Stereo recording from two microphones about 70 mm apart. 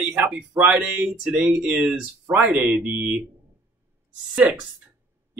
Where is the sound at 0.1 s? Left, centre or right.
Centre.